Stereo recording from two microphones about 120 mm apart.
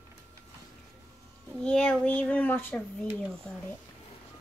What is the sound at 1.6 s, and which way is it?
Speech, 5° left (ahead or behind).